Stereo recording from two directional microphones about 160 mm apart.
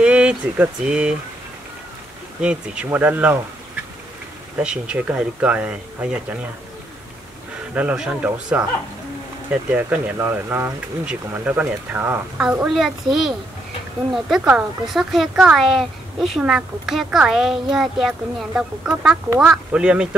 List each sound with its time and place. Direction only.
0.0 s speech: 5° right (ahead or behind)
2.4 s speech: 5° right (ahead or behind)
4.6 s speech: 5° right (ahead or behind)
7.7 s speech: 5° right (ahead or behind)
9.7 s speech: 10° right (ahead or behind)